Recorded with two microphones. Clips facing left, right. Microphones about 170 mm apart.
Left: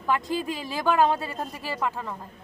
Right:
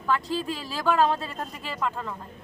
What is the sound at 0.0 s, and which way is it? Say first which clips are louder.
Speech: left 1 dB; 15° left (ahead or behind).